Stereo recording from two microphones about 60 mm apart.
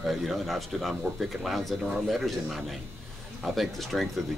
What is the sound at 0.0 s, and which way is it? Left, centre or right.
Speech, centre.